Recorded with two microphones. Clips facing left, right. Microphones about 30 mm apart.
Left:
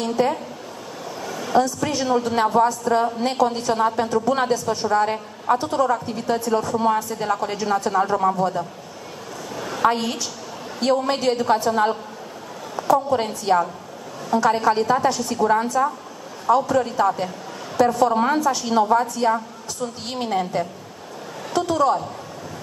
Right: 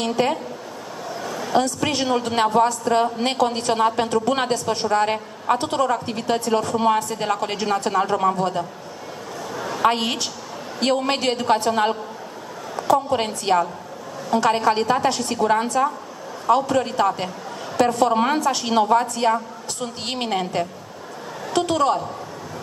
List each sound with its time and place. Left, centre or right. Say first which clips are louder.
0.0 s a woman's voice: even; right
1.2 s a sound: right 1 dB; centre
1.6 s a woman's voice: left 1 dB; right
9.5 s a sound: right 1 dB; centre
9.8 s a woman's voice: even; right
14.3 s a woman's voice: even; right
15.0 s a woman's voice: even; right